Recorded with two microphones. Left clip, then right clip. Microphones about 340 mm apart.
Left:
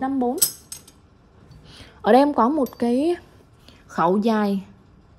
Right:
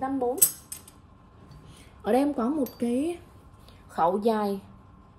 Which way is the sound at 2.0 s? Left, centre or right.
Left.